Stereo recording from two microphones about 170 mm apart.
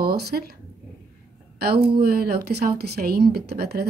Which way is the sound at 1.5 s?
65° right (ahead or behind).